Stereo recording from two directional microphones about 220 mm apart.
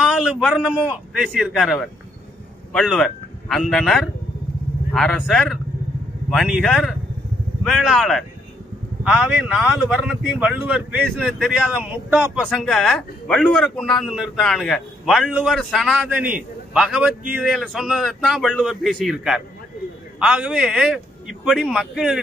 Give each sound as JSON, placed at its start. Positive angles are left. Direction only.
{"t": 0.2, "sound": "speech", "side_deg": 0}
{"t": 10.4, "sound": "speech", "side_deg": -5}